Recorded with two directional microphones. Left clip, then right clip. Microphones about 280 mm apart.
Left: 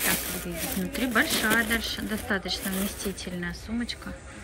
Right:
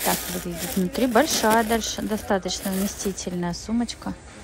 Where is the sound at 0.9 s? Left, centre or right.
Centre.